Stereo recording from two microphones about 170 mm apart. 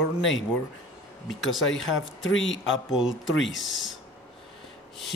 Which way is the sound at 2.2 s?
90° left.